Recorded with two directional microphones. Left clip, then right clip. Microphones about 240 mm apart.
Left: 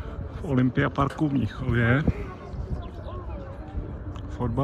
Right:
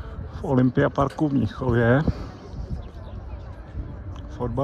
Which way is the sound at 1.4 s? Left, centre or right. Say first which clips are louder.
Right 5 dB; right.